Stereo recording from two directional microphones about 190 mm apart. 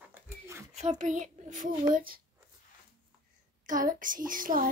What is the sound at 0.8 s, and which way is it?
Speech, 40° right (ahead or behind).